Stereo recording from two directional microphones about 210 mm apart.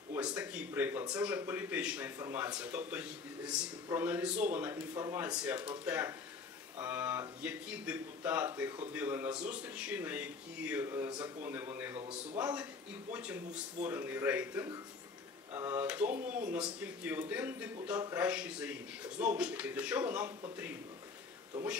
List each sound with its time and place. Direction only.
0.1 s a man's voice: 5° right (ahead or behind)
12.0 s a man's voice: 25° right (ahead or behind)
13.1 s a man's voice: 5° right (ahead or behind)
18.2 s a man's voice: 5° right (ahead or behind)